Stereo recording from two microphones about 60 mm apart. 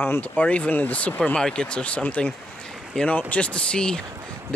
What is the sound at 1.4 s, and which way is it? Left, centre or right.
Speech, centre.